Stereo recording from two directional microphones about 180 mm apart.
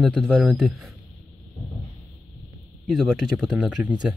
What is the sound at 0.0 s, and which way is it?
Speech, centre (ahead or behind).